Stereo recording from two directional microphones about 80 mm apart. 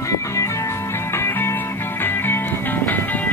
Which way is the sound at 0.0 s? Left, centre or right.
Left.